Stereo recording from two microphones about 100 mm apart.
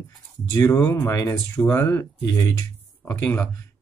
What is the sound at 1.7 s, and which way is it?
Speech, 25° left (ahead or behind).